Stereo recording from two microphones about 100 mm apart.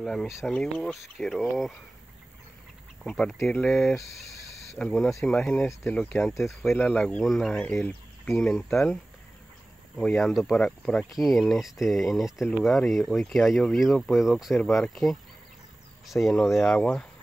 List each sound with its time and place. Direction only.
0.0 s speech: 5° left (ahead or behind)
3.0 s speech: 5° left (ahead or behind)
6.8 s speech: 15° left (ahead or behind)
7.5 s speech: 15° left (ahead or behind)
9.9 s speech: 5° left (ahead or behind)